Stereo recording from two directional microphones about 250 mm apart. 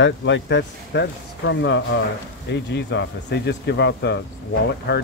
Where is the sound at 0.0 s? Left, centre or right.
Left.